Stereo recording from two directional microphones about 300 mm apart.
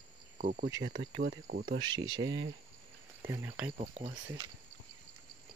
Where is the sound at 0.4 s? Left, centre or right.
Right.